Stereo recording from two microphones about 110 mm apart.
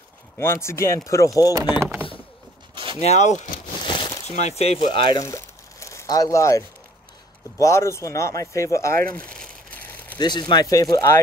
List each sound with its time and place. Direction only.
0.4 s speech: 25° left (ahead or behind)
1.7 s speech: 20° right (ahead or behind)
2.7 s a sound: 50° right (ahead or behind)
3.0 s speech: 85° left
3.8 s crumpling: 45° left (ahead or behind)
4.3 s speech: 85° left
4.8 s speech: 45° left (ahead or behind)
5.2 s crumpling: 25° left (ahead or behind)
7.6 s speech: 25° left (ahead or behind)
9.3 s a sound: 10° left (ahead or behind)
10.1 s speech: 40° left (ahead or behind)